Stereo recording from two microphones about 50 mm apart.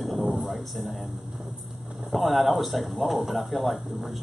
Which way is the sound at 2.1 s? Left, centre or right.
Centre.